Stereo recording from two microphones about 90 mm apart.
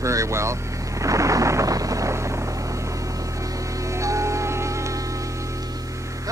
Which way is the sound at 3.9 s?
35° right (ahead or behind).